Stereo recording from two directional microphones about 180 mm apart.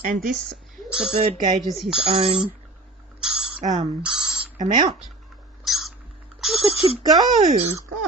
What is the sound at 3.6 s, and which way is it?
Speech, 40° right (ahead or behind).